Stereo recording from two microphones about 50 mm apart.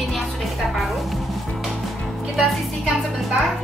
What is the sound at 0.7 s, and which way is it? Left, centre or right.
Music, centre.